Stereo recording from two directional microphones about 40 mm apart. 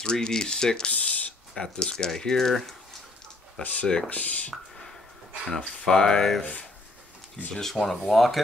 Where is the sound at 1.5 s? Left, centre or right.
Left.